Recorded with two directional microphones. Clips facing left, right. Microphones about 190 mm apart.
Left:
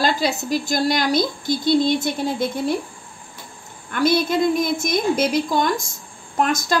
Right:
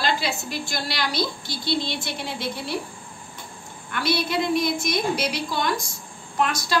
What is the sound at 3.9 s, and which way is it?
A woman's voice, 45° left (ahead or behind).